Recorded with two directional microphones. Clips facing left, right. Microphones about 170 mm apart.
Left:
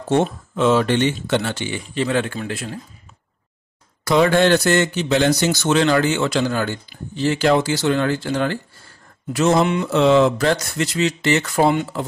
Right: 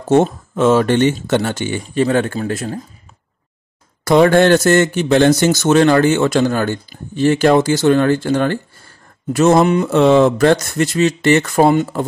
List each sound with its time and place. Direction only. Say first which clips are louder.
0.1 s speech: right 5 dB; 45° right (ahead or behind)
4.0 s speech: right 5 dB; 50° right (ahead or behind)